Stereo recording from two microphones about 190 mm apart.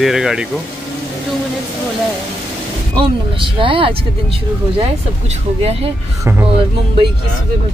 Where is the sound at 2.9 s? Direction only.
25° right (ahead or behind).